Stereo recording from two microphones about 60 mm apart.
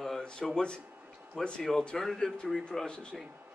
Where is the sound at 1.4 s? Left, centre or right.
Centre.